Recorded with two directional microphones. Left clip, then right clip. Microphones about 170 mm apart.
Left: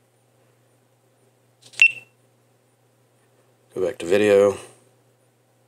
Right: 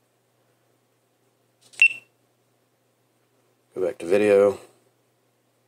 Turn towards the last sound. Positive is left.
turn(degrees=5)  # may be behind; listen again after turning